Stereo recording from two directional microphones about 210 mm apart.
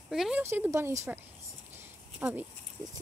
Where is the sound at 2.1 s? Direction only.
10° right (ahead or behind).